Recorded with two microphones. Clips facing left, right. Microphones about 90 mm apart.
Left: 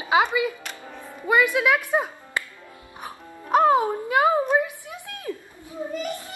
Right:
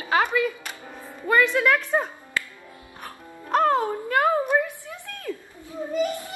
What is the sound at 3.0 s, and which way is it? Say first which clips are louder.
Music: left 2 dB; 10° left (ahead or behind).